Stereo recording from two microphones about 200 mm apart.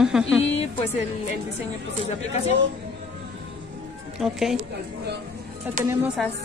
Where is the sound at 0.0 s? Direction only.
5° right (ahead or behind).